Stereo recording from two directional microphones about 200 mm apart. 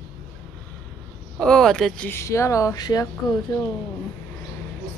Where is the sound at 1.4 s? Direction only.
5° left (ahead or behind); by 3.4 s 20° left (ahead or behind).